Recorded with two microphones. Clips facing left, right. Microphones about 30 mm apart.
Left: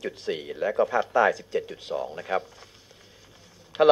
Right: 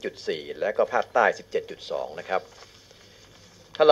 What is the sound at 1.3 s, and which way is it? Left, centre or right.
Speech, right.